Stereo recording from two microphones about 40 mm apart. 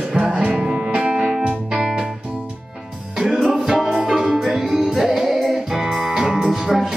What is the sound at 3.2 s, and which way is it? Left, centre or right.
Music, centre.